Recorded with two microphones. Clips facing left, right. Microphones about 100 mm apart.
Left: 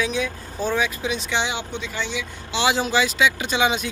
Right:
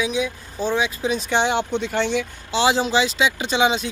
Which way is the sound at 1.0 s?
45° right (ahead or behind).